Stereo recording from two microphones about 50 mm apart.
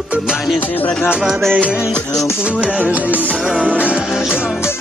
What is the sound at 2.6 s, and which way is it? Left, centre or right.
Music, right.